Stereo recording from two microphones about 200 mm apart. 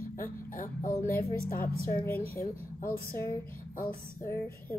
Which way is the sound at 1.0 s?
10° left (ahead or behind).